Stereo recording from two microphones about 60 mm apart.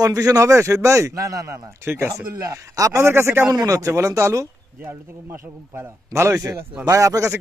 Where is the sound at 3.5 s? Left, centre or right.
Right.